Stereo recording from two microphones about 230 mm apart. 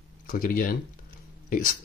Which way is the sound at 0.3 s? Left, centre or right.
Left.